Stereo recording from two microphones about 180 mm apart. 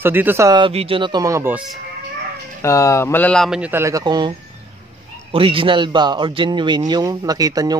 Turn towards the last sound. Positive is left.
turn(degrees=-20)  # may be behind; listen again after turning